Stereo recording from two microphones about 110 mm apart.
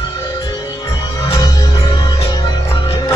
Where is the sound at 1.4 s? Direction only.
40° left (ahead or behind).